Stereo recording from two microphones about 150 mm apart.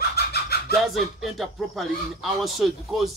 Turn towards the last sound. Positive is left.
turn(degrees=0)  # may be behind; listen again after turning